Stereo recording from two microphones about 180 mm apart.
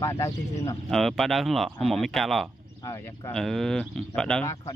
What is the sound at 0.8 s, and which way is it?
Speech, centre (ahead or behind).